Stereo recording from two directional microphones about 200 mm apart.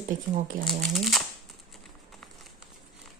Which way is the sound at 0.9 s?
Centre (ahead or behind).